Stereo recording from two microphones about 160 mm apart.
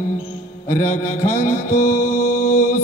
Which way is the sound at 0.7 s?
55° left (ahead or behind).